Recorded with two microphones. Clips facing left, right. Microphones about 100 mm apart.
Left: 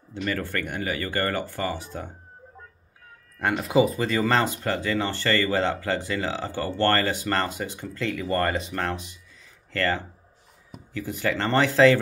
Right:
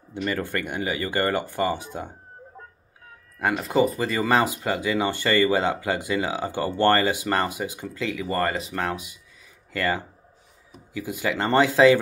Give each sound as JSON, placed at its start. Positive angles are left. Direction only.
{"t": 0.1, "sound": "speech", "side_deg": -15}
{"t": 3.3, "sound": "speech", "side_deg": 0}